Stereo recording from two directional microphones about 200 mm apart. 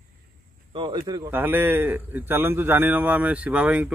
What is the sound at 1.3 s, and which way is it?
A man's voice, 10° right (ahead or behind).